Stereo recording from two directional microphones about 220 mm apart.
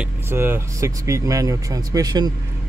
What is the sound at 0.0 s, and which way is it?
Speech, 10° right (ahead or behind).